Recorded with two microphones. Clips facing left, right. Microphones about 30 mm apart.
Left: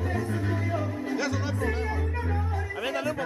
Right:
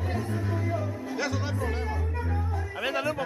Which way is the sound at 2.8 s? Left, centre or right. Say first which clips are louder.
Right 2 dB; centre.